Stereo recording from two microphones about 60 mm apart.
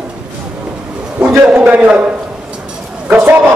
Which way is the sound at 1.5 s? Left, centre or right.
Right.